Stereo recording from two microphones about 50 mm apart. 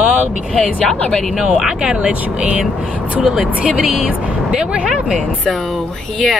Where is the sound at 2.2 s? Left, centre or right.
Right.